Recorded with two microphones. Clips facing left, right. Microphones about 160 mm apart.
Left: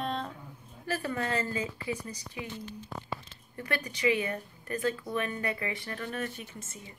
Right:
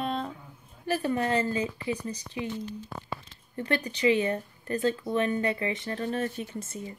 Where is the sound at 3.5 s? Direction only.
25° right (ahead or behind).